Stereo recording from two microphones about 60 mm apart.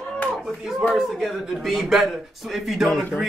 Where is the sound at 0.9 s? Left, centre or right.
Centre.